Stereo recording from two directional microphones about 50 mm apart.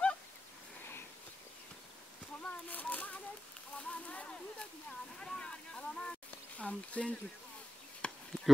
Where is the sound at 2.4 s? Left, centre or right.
Left; by 6.7 s centre.